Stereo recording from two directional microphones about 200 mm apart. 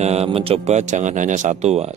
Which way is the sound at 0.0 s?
30° right (ahead or behind).